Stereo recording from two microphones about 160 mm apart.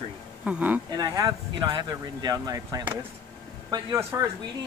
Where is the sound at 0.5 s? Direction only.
10° right (ahead or behind).